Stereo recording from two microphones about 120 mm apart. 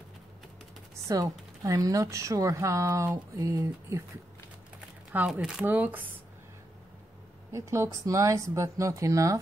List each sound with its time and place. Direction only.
1.0 s speech: 30° right (ahead or behind)
5.3 s speech: 5° right (ahead or behind)
7.5 s speech: 25° right (ahead or behind)